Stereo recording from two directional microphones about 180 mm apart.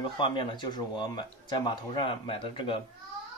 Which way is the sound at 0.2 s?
25° left (ahead or behind).